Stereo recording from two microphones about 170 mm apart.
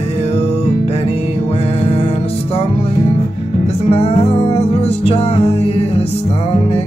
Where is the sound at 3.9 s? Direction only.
35° left (ahead or behind).